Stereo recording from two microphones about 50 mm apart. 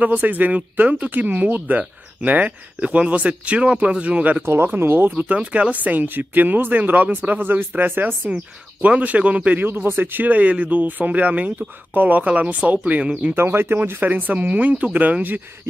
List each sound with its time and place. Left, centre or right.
0.0 s speech: right
4.4 s speech: right
4.6 s speech: right
5.4 s speech: right
8.8 s speech: right
9.7 s speech: right
13.4 s speech: right